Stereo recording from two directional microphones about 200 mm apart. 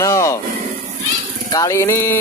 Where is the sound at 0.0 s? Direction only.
15° left (ahead or behind).